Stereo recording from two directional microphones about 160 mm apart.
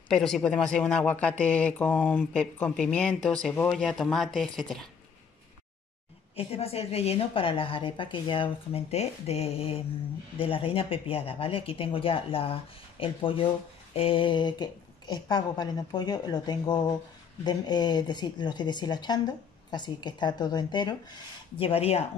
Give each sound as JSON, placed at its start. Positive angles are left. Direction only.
{"t": 0.1, "sound": "speech", "side_deg": 5}
{"t": 6.3, "sound": "a woman's voice", "side_deg": 40}